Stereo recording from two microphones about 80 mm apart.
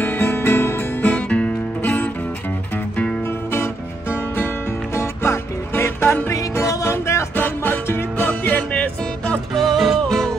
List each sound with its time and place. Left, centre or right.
0.0 s music: left
1.0 s music: centre
4.9 s music: left
7.3 s music: left
9.5 s music: centre